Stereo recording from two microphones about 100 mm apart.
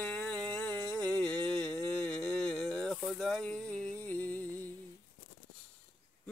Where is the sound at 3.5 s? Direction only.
15° left (ahead or behind).